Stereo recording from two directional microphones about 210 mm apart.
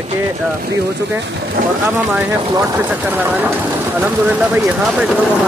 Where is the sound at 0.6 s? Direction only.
50° right (ahead or behind).